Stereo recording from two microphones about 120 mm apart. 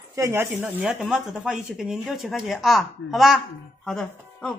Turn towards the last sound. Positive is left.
turn(degrees=5)  # may be behind; listen again after turning